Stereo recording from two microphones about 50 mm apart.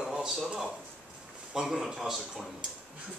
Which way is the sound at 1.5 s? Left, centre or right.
Centre.